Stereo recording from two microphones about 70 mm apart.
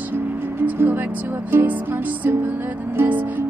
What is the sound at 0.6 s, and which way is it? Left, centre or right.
Music, right.